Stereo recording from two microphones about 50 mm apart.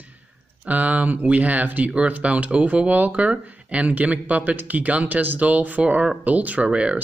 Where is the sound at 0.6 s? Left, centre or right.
Right.